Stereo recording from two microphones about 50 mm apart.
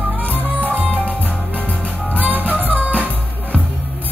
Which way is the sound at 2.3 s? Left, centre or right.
Right.